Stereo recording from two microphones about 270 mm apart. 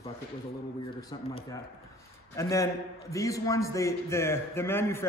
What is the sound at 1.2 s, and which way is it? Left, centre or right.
A man's voice, left.